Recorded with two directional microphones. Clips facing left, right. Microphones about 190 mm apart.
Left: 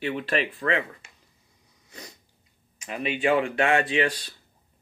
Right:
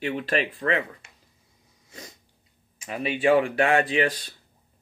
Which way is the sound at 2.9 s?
35° right (ahead or behind).